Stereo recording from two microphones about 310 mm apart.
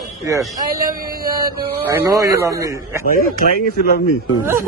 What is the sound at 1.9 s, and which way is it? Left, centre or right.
Speech, centre.